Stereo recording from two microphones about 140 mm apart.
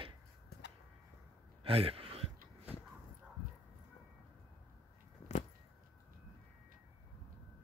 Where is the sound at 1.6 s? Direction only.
40° right (ahead or behind).